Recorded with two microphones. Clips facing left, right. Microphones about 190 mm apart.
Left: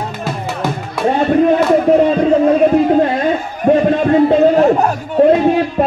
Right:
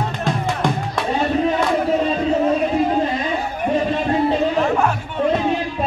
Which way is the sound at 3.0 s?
60° left (ahead or behind).